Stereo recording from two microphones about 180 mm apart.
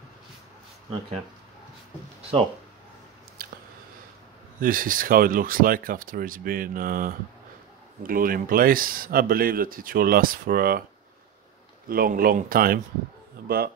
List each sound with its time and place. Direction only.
3.4 s a sound: 55° right (ahead or behind)
4.6 s speech: 50° right (ahead or behind)
11.9 s speech: 55° right (ahead or behind)